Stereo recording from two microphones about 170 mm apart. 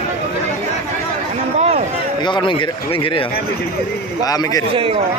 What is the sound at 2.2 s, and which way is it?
Speech, 25° left (ahead or behind).